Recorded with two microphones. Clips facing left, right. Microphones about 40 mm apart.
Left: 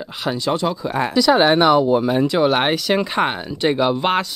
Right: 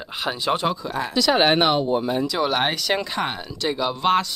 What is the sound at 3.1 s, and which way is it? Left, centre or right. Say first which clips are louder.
Speech: left 6 dB; left.